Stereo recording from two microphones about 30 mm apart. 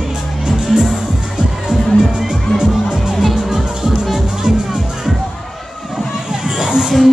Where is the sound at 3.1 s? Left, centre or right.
Centre.